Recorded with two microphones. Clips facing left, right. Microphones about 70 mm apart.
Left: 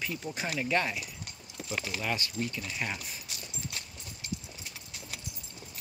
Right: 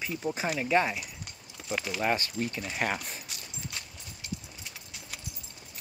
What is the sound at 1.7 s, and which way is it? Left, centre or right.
Speech, right.